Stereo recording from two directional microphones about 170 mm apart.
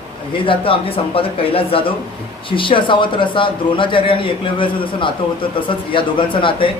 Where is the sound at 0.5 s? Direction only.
30° left (ahead or behind).